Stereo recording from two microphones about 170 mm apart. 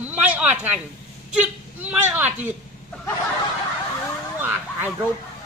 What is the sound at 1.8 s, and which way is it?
Speech, 10° right (ahead or behind).